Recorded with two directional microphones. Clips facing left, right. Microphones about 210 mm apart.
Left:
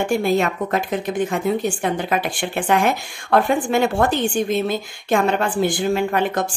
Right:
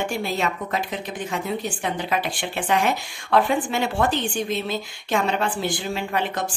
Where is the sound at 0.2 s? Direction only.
50° left (ahead or behind).